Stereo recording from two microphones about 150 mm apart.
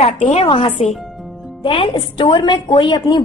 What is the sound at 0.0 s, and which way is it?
A woman's voice, 45° left (ahead or behind).